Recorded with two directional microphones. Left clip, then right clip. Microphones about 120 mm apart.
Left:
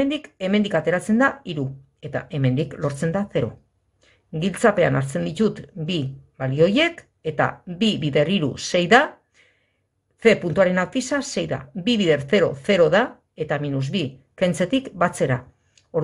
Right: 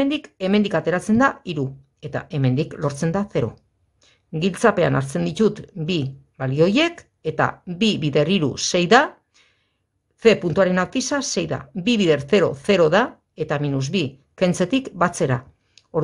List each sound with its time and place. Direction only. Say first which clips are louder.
0.0 s speech: right 1 dB; 30° right (ahead or behind)